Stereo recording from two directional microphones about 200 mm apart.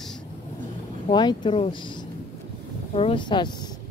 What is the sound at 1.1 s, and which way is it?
Speech, 20° left (ahead or behind).